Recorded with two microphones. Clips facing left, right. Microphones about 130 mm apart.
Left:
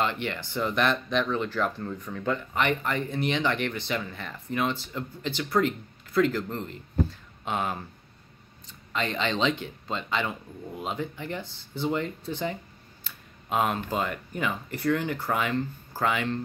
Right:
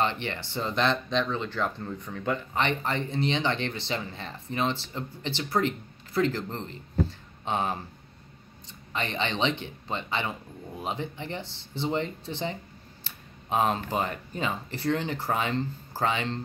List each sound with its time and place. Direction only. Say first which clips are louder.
0.0 s speech: even; 25° right (ahead or behind)
8.9 s speech: left 2 dB; 25° right (ahead or behind)
11.4 s speech: even; 85° right
11.8 s speech: left 1 dB; 25° right (ahead or behind)